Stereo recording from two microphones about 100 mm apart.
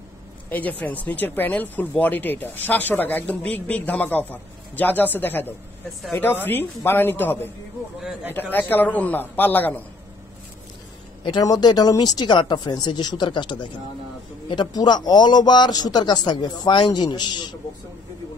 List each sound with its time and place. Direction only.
0.5 s a man's voice: 15° left (ahead or behind)
11.4 s a man's voice: 40° left (ahead or behind)